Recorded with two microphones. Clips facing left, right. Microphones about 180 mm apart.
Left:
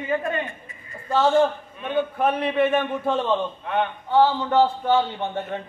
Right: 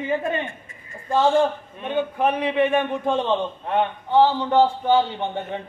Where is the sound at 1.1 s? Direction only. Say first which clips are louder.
Even; 15° right (ahead or behind).